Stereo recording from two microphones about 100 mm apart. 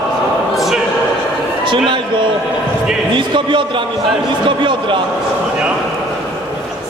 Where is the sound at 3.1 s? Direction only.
55° right (ahead or behind).